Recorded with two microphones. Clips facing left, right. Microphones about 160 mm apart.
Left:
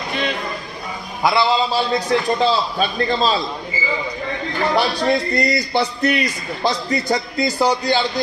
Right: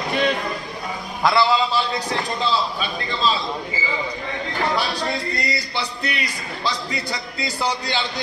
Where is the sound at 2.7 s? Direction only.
45° left (ahead or behind).